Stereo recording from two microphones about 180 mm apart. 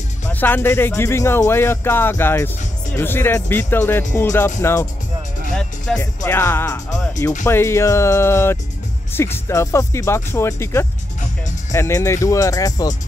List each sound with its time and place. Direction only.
0.3 s speech: 10° left (ahead or behind)
5.5 s speech: 5° left (ahead or behind); by 12.9 s 20° left (ahead or behind)